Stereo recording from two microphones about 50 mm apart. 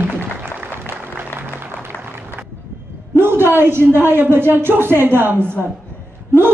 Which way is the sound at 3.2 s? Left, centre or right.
Right.